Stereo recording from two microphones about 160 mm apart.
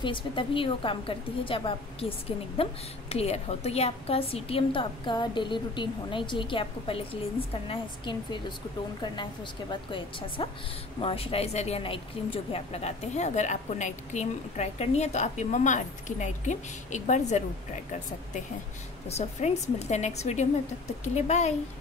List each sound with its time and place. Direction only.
0.0 s a woman's voice: 30° left (ahead or behind); by 17.4 s 45° left (ahead or behind)
19.0 s a woman's voice: 40° left (ahead or behind)